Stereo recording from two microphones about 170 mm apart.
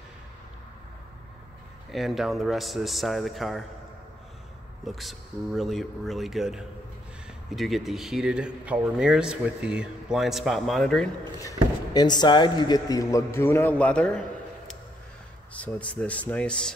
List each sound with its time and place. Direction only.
1.9 s speech: centre (ahead or behind)
4.8 s speech: centre (ahead or behind)
11.9 s a man's voice: 25° left (ahead or behind); by 14.2 s 5° left (ahead or behind)
15.5 s speech: 10° left (ahead or behind)